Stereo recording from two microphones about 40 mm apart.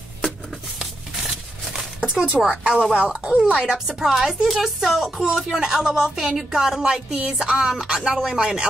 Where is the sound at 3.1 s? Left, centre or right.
Right.